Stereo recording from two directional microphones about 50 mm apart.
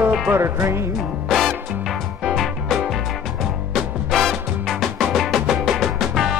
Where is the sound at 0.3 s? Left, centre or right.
Right.